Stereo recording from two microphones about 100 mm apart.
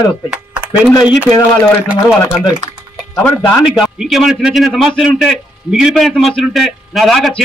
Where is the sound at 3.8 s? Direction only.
5° right (ahead or behind).